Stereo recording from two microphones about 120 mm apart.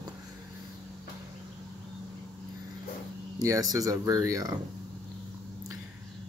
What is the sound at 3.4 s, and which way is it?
Speech, 30° right (ahead or behind).